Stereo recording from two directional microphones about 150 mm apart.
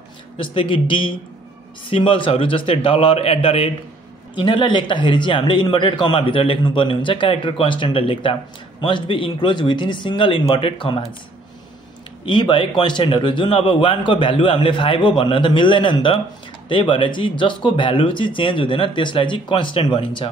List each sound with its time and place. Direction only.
0.4 s speech: 35° left (ahead or behind)
12.3 s speech: 30° left (ahead or behind)